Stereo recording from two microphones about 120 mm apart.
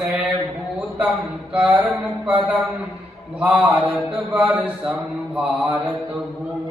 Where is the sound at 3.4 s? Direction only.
10° right (ahead or behind).